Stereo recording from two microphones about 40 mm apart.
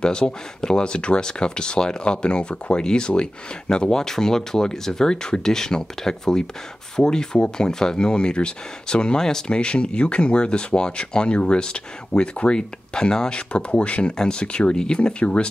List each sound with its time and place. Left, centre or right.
0.0 s speech: left